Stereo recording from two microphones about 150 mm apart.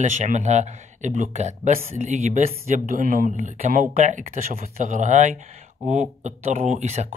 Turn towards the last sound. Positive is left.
turn(degrees=-50)  # may be behind; listen again after turning